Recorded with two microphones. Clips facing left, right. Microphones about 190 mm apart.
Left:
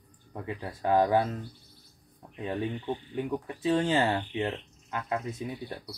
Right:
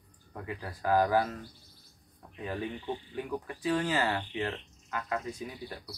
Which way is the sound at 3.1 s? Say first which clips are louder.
Left 4 dB; 20° left (ahead or behind).